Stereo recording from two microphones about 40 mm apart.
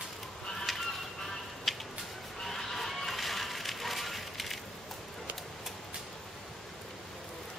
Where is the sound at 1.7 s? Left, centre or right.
Centre.